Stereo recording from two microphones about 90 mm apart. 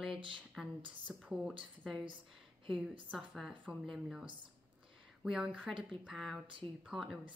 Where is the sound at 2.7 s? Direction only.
10° right (ahead or behind).